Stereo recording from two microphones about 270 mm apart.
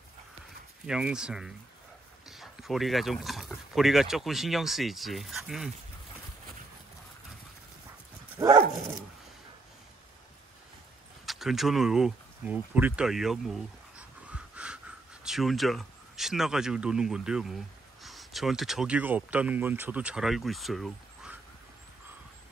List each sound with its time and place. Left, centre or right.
0.8 s speech: centre
8.4 s dog: centre
11.2 s speech: centre